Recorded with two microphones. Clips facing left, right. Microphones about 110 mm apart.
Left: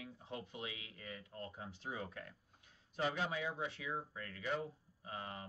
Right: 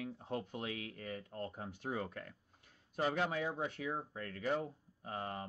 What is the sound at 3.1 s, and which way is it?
Speech, 60° right (ahead or behind).